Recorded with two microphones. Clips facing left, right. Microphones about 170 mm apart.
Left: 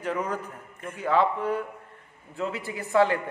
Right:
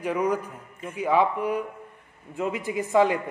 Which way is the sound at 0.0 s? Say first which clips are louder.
Right 4 dB; 10° right (ahead or behind).